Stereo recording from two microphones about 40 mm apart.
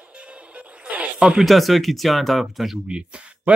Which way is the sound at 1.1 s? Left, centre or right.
Right.